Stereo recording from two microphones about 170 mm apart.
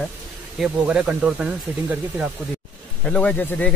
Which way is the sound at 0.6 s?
5° right (ahead or behind).